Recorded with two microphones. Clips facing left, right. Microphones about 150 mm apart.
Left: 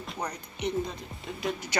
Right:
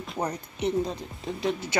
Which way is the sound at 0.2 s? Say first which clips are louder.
Right 5 dB; 35° right (ahead or behind).